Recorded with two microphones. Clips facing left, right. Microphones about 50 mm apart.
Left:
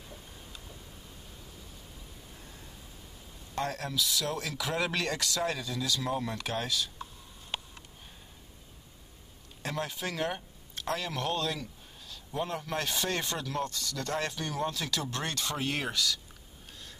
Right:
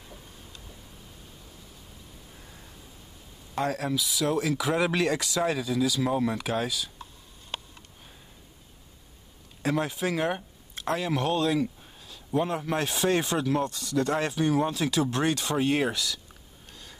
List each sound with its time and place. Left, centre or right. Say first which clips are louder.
3.5 s speech: right 5 dB; centre
9.6 s speech: right 7 dB; centre